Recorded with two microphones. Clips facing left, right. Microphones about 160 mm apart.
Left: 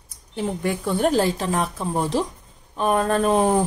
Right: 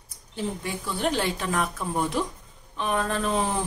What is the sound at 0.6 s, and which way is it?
Speech, 55° left (ahead or behind).